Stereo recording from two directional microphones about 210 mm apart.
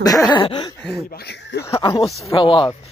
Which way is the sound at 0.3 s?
20° left (ahead or behind).